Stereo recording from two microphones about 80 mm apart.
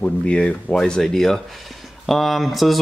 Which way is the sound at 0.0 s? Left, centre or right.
Centre.